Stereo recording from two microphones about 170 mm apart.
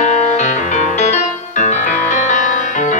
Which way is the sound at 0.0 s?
45° left (ahead or behind).